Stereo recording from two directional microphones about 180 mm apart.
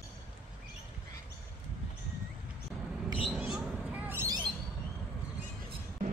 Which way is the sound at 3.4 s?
5° right (ahead or behind).